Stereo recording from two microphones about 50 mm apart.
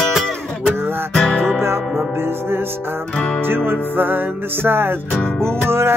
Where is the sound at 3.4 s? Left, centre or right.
Right.